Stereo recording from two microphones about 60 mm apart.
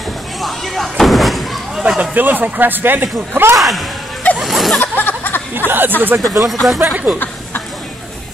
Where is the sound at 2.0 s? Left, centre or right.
Right.